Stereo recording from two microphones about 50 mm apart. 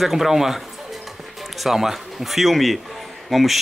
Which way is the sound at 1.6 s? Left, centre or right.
Centre.